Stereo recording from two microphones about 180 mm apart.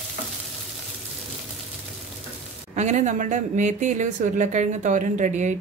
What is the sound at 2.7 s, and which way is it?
Speech, 40° right (ahead or behind).